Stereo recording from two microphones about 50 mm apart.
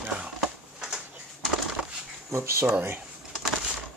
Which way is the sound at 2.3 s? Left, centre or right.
Right.